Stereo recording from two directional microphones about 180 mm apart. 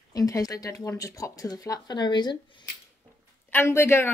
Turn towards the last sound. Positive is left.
turn(degrees=15)  # may be behind; listen again after turning